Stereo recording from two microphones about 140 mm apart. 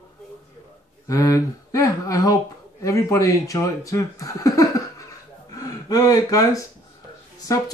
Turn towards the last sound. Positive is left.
turn(degrees=25)  # may be behind; listen again after turning